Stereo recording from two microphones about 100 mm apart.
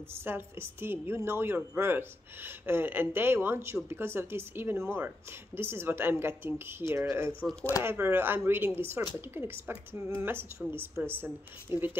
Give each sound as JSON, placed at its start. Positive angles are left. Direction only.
{"t": 0.1, "sound": "a woman's voice", "side_deg": -25}
{"t": 7.8, "sound": "a woman's voice", "side_deg": -20}